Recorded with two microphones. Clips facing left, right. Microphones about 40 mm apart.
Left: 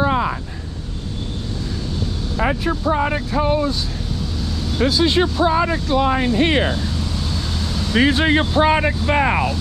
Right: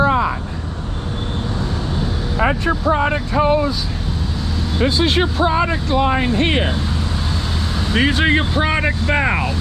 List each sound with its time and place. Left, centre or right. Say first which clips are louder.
0.0 s vehicle: right 3 dB; centre
2.7 s speech: right 2 dB; centre
4.7 s speech: even; centre
7.9 s speech: even; centre
8.8 s speech: even; right